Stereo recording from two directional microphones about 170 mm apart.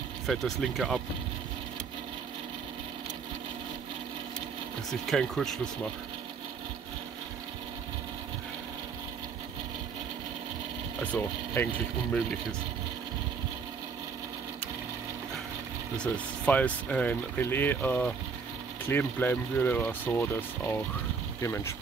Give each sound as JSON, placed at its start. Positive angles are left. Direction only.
{"t": 0.3, "sound": "speech", "side_deg": 0}
{"t": 5.0, "sound": "speech", "side_deg": 0}
{"t": 11.0, "sound": "speech", "side_deg": 10}
{"t": 16.0, "sound": "speech", "side_deg": 10}